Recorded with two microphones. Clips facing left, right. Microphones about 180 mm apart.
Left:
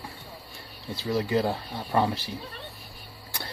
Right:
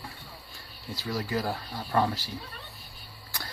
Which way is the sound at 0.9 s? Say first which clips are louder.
Left 5 dB; 25° left (ahead or behind).